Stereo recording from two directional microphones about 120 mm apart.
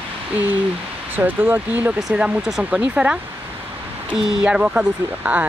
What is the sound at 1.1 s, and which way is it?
Speech, 15° right (ahead or behind).